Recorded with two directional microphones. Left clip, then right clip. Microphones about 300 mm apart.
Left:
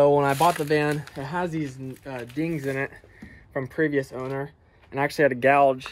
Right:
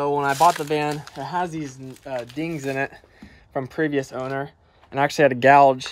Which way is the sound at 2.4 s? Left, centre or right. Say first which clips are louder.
Even; right.